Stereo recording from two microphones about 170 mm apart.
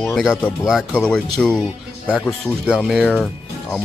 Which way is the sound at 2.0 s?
5° right (ahead or behind).